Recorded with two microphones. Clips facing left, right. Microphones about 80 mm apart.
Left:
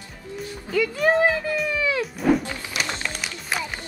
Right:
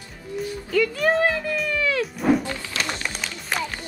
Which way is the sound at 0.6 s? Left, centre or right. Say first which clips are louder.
Even; centre.